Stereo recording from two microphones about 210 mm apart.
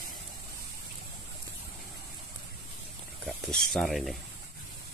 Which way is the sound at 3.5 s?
Centre (ahead or behind).